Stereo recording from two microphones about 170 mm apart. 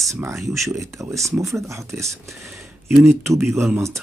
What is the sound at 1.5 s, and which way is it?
Speech, 15° right (ahead or behind).